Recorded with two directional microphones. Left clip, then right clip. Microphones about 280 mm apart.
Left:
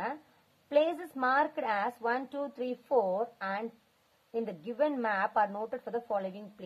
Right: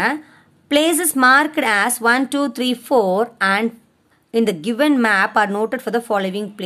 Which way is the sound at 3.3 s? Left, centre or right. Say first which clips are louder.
Right 18 dB; centre.